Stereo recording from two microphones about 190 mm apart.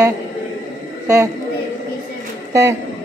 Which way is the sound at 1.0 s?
15° right (ahead or behind).